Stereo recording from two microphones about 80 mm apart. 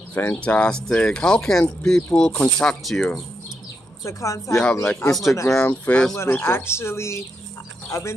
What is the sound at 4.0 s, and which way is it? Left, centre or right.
Speech, left.